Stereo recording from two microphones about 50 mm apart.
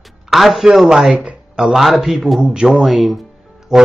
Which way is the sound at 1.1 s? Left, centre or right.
Right.